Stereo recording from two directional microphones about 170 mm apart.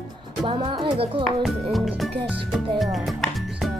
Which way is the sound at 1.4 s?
Centre (ahead or behind).